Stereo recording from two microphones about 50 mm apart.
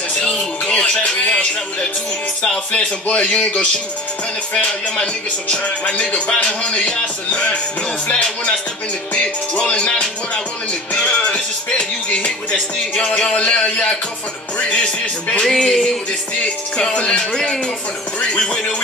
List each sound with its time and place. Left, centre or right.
0.2 s music: centre
2.7 s music: left
15.4 s speech: centre